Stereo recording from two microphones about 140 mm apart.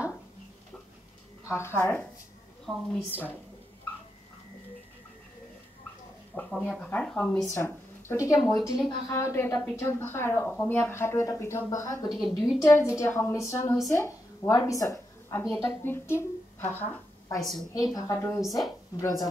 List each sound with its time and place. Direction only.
1.5 s speech: 15° left (ahead or behind)
2.6 s a woman's voice: 5° left (ahead or behind)
3.1 s speech: 15° left (ahead or behind)
6.3 s speech: 5° left (ahead or behind)
7.5 s a woman's voice: 15° left (ahead or behind)
17.4 s speech: centre (ahead or behind)
17.9 s speech: 25° left (ahead or behind)